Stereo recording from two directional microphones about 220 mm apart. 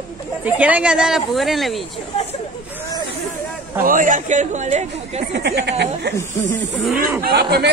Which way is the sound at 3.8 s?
35° right (ahead or behind).